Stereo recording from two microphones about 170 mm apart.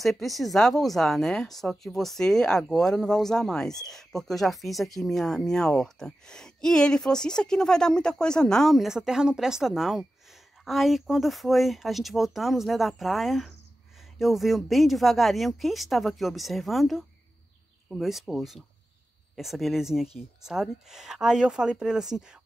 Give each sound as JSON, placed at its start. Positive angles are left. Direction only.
{"t": 0.0, "sound": "speech", "side_deg": 0}